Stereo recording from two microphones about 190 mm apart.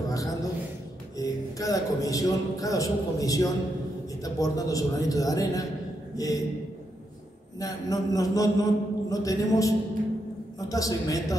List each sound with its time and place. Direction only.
0.1 s a woman's voice: 20° left (ahead or behind)
7.6 s a man's voice: 20° left (ahead or behind)